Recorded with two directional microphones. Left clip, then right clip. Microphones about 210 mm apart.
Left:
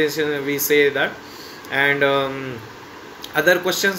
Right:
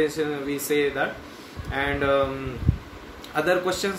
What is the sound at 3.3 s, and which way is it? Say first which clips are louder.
Speech: left 6 dB; 10° right (ahead or behind).